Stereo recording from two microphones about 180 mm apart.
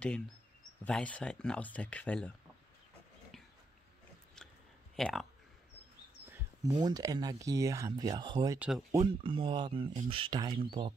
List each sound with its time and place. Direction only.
0.8 s speech: 5° left (ahead or behind)
4.4 s a sound: 5° left (ahead or behind)
4.9 s speech: centre (ahead or behind)
6.3 s speech: 20° right (ahead or behind)
8.5 s speech: 5° right (ahead or behind)
8.9 s speech: 25° right (ahead or behind)